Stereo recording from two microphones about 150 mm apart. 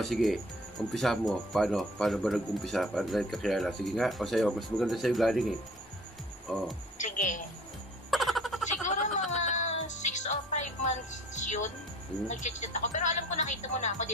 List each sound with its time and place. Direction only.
0.0 s speech: centre (ahead or behind)
6.5 s speech: centre (ahead or behind)
7.0 s a woman's voice: 55° left (ahead or behind)
8.1 s a sound: centre (ahead or behind)
8.8 s a sound: 55° left (ahead or behind)
9.3 s music: 50° left (ahead or behind)
12.3 s speech: 55° left (ahead or behind)